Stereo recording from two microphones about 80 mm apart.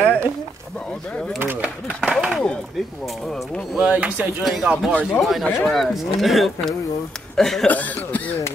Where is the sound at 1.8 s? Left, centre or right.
Centre.